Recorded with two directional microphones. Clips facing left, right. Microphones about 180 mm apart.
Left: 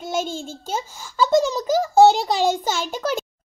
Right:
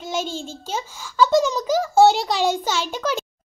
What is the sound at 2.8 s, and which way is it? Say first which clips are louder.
Speech: even; 45° left (ahead or behind).